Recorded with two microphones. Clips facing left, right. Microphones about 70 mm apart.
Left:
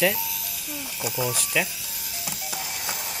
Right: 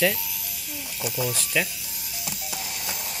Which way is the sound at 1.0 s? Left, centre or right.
Left.